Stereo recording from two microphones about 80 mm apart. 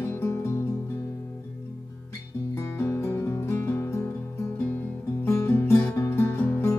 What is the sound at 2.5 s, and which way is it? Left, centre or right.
Music, left.